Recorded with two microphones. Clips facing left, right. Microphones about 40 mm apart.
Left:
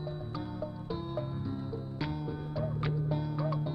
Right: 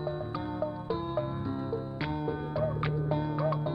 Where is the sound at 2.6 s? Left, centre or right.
Centre.